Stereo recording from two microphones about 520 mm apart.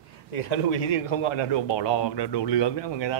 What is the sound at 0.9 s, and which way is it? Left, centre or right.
Speech, left.